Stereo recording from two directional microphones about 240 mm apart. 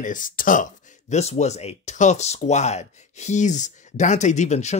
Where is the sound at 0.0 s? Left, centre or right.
Left.